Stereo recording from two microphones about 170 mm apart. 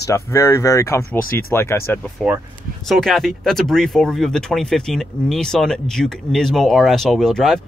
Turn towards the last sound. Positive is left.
turn(degrees=0)  # may be behind; listen again after turning